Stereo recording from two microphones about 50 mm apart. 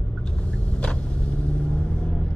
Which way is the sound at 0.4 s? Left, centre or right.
Left.